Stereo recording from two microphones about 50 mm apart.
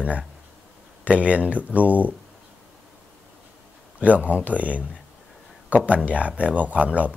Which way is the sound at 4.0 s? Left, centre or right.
Right.